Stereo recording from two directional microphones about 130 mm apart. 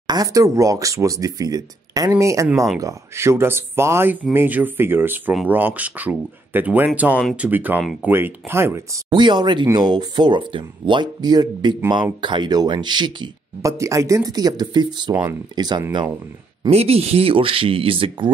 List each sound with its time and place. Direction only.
0.0 s speech: 30° right (ahead or behind)
9.1 s speech: 35° right (ahead or behind)
13.6 s speech: 25° right (ahead or behind)
16.7 s speech: 50° right (ahead or behind)